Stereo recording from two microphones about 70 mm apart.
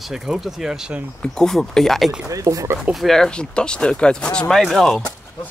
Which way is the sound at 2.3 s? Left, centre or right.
Right.